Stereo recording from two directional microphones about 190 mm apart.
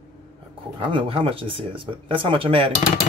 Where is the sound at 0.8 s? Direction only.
25° right (ahead or behind).